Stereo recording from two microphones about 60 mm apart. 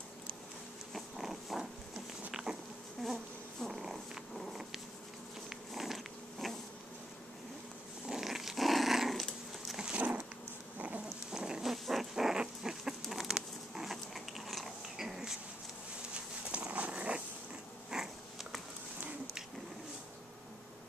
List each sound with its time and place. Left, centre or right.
0.9 s insect: centre
3.6 s purr: centre
5.7 s insect: centre
8.1 s dog: centre
9.9 s a sound: right
11.3 s rodents: centre
13.0 s cat: centre
16.5 s dog: right
17.9 s a sound: centre